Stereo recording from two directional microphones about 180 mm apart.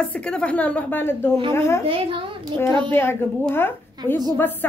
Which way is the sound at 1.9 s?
30° right (ahead or behind).